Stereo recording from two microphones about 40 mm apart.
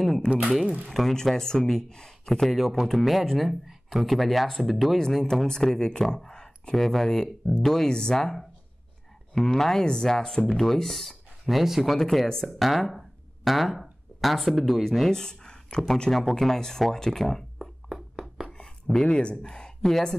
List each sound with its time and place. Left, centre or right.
0.8 s speech: centre
1.1 s speech: centre
2.5 s speech: centre
4.9 s speech: centre
5.8 s speech: left
6.0 s speech: centre
10.6 s speech: centre
12.4 s speech: centre
15.0 s a sound: centre
16.1 s speech: centre
17.6 s a sound: centre
18.5 s speech: centre